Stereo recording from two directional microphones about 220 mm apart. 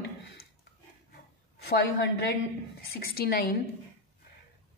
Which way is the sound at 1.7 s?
50° left (ahead or behind).